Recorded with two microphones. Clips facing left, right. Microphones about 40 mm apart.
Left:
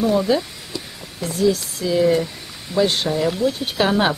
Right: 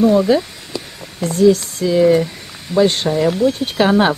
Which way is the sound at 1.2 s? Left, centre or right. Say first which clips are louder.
Right 7 dB; centre.